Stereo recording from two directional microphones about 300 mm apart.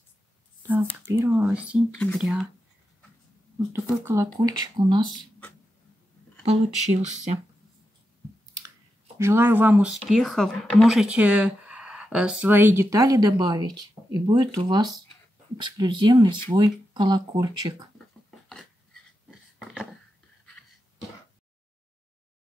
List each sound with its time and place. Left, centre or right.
0.6 s whispering: centre
1.1 s speech: centre
3.9 s speech: centre
6.4 s speech: right
9.2 s speech: centre
19.6 s a sound: centre